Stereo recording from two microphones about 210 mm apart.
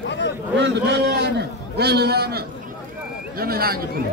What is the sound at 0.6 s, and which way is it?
A man's voice, 55° right (ahead or behind).